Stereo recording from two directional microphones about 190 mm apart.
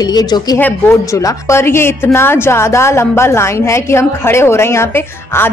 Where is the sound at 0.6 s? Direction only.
10° left (ahead or behind).